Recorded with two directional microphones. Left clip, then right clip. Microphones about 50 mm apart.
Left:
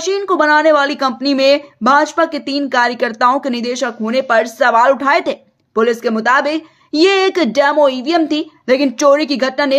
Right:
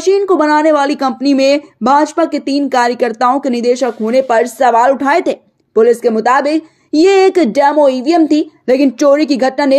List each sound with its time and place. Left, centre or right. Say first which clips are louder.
0.3 s a woman's voice: left 3 dB; right
1.8 s a woman's voice: right 1 dB; right
3.0 s a woman's voice: right 1 dB; centre; by 6.6 s right
6.9 s speech: right 4 dB; centre
7.8 s a woman's voice: right 2 dB; right
8.6 s speech: right 2 dB; right
8.9 s a woman's voice: left 1 dB; centre
9.2 s a woman's voice: right 3 dB; right